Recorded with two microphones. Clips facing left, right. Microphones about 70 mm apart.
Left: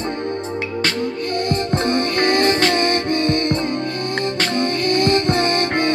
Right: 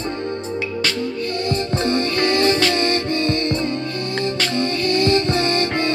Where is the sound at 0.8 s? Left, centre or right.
Left.